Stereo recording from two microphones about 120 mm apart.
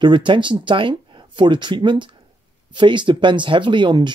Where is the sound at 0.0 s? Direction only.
40° right (ahead or behind).